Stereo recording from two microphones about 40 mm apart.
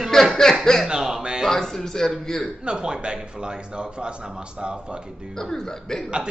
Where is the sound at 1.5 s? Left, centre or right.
Centre.